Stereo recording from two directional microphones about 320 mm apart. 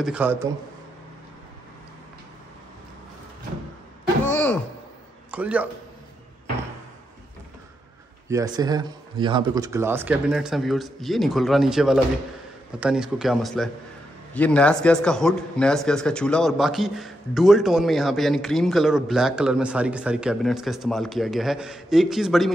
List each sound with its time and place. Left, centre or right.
0.0 s a man's voice: centre
4.3 s a sound: centre
5.3 s a man's voice: centre
8.3 s a man's voice: centre